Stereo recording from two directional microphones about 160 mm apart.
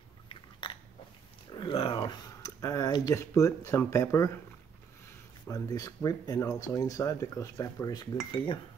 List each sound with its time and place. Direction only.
0.3 s biting: 30° left (ahead or behind)
1.5 s speech: 30° left (ahead or behind)
2.2 s speech: 20° left (ahead or behind)
5.5 s speech: 20° left (ahead or behind)